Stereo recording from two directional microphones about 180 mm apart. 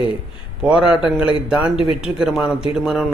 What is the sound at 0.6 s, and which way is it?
A man's voice, 5° right (ahead or behind).